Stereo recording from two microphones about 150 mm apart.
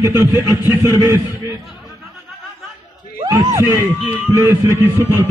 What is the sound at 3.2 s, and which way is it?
A man's voice, 20° right (ahead or behind).